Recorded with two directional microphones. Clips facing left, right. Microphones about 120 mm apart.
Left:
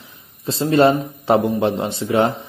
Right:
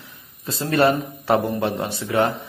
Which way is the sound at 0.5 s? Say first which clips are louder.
Left 4 dB; 20° left (ahead or behind).